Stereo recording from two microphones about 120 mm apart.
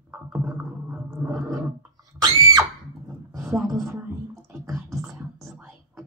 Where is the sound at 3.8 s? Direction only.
25° right (ahead or behind).